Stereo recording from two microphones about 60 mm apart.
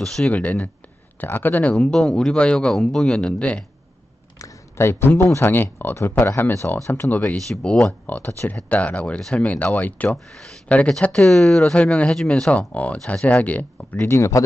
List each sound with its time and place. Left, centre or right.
0.0 s speech: centre
0.3 s speech: left
1.2 s speech: left
1.8 s speech: centre
4.7 s speech: left
6.9 s speech: left
8.2 s speech: left
8.6 s speech: left
10.1 s speech: centre
11.0 s speech: left
11.7 s speech: left
12.5 s speech: left
14.0 s speech: left